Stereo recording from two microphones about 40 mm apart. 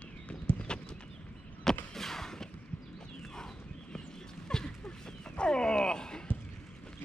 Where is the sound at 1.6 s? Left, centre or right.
Centre.